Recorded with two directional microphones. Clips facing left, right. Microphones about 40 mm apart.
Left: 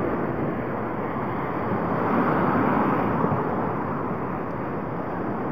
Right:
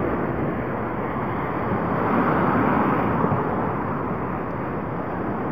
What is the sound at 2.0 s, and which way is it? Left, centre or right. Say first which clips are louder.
Vehicle: right 2 dB; right.